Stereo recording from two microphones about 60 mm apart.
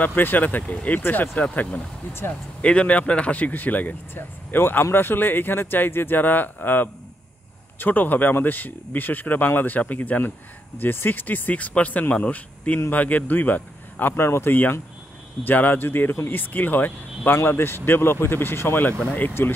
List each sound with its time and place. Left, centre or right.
0.0 s speech: left